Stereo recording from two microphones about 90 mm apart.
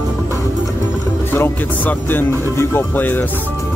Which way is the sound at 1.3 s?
25° left (ahead or behind).